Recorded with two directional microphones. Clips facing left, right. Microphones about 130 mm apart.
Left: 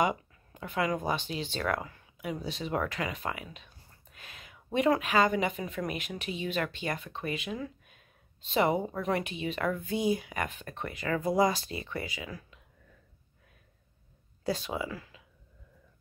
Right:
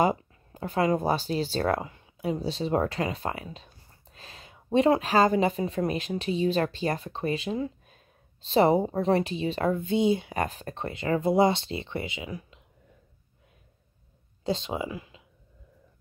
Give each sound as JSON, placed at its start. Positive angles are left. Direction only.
{"t": 0.0, "sound": "speech", "side_deg": -35}
{"t": 14.4, "sound": "speech", "side_deg": -25}